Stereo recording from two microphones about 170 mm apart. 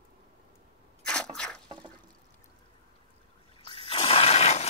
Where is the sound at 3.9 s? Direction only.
35° left (ahead or behind).